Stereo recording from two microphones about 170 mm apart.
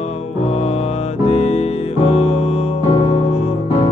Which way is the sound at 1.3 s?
40° left (ahead or behind).